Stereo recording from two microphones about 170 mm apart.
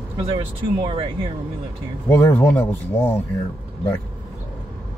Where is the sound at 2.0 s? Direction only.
15° left (ahead or behind).